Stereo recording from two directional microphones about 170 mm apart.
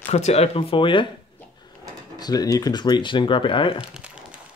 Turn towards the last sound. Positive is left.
turn(degrees=-5)  # may be behind; listen again after turning